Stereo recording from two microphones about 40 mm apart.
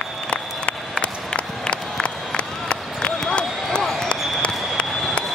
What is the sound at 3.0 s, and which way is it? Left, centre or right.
Basketball bounce, left.